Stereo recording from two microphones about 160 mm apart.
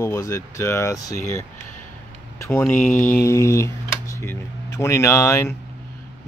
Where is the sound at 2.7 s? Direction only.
55° left (ahead or behind).